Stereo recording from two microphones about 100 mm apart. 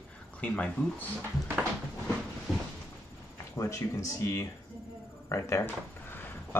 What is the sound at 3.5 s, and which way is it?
Speech, 30° left (ahead or behind).